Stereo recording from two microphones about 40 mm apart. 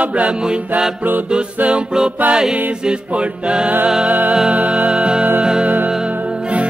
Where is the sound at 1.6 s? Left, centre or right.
Right.